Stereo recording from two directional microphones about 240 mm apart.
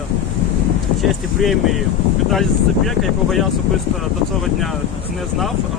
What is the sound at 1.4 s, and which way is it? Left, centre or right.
Speech, centre.